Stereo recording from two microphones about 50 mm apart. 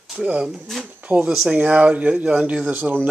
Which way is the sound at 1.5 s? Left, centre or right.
Right.